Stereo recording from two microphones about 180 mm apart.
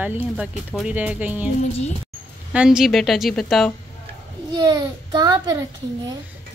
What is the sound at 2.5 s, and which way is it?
A woman's voice, 5° right (ahead or behind).